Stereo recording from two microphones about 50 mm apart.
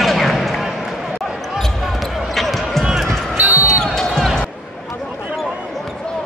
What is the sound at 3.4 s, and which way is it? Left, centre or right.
Basketball bounce, right.